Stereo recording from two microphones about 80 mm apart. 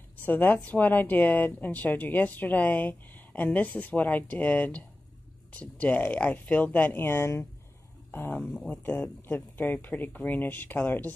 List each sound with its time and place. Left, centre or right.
0.2 s a woman's voice: left